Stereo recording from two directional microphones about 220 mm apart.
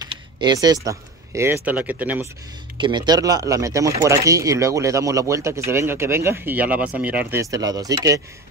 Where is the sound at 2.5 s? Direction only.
20° right (ahead or behind).